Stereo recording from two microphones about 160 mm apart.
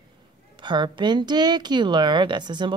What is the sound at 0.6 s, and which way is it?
Speech, 30° right (ahead or behind).